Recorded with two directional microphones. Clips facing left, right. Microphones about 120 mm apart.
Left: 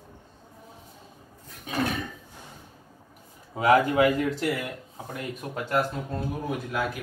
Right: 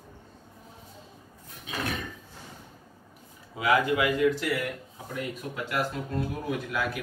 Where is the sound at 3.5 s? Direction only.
40° left (ahead or behind).